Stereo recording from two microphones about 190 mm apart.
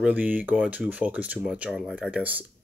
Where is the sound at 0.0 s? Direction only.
10° right (ahead or behind).